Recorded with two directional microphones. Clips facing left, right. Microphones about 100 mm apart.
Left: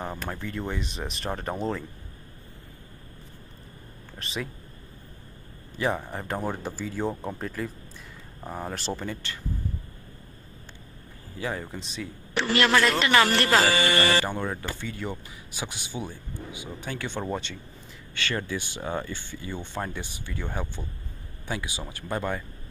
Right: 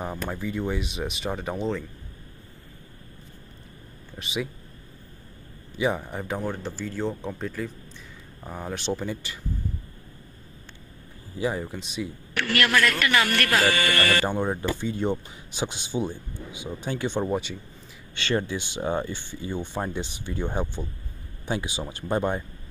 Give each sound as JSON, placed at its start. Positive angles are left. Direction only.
{"t": 0.0, "sound": "speech", "side_deg": -5}
{"t": 4.2, "sound": "speech", "side_deg": -5}
{"t": 5.8, "sound": "speech", "side_deg": -5}
{"t": 9.0, "sound": "speech", "side_deg": -10}
{"t": 11.3, "sound": "speech", "side_deg": -15}
{"t": 11.6, "sound": "speech", "side_deg": -5}
{"t": 12.4, "sound": "a man's voice", "side_deg": 25}
{"t": 14.2, "sound": "speech", "side_deg": -20}
{"t": 18.1, "sound": "speech", "side_deg": -20}